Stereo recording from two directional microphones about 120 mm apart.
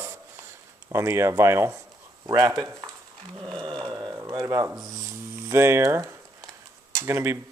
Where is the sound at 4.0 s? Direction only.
20° right (ahead or behind).